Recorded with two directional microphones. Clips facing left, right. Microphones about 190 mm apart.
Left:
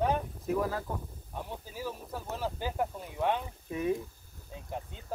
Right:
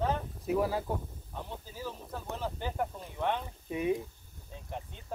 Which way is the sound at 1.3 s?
10° left (ahead or behind).